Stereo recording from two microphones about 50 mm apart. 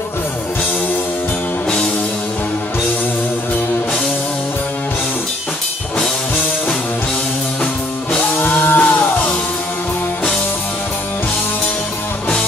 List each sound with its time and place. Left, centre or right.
8.4 s music: left